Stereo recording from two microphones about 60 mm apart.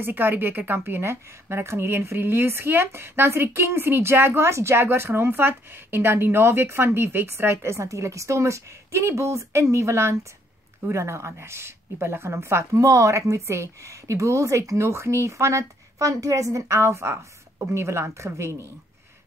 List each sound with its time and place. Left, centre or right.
0.0 s a woman's voice: right
12.8 s a woman's voice: right